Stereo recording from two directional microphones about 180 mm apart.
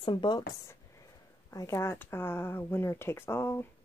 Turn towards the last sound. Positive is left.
turn(degrees=15)  # may be behind; listen again after turning